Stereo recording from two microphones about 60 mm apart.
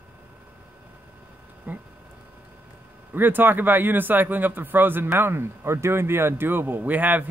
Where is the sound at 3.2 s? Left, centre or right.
Right.